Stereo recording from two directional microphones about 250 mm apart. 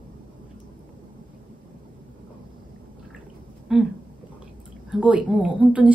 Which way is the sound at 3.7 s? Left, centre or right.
Centre.